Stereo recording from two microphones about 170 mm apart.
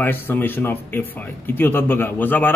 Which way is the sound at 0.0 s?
10° left (ahead or behind).